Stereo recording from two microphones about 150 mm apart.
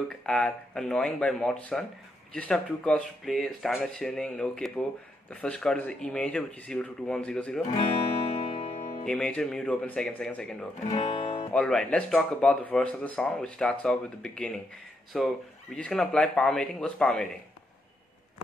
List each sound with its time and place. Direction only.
0.1 s speech: 5° left (ahead or behind)
8.5 s music: 40° left (ahead or behind)
9.0 s speech: 5° left (ahead or behind)
11.0 s music: 40° left (ahead or behind)
11.5 s speech: 5° left (ahead or behind)